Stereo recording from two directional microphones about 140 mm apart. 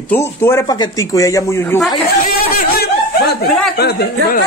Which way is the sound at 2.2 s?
90° left.